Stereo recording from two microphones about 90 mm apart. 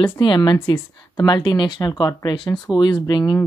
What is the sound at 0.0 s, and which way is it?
A woman's voice, 60° left (ahead or behind).